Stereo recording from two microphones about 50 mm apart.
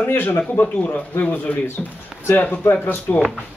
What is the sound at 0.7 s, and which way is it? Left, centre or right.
Speech, left.